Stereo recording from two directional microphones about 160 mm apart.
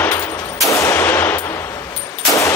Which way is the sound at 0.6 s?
20° left (ahead or behind).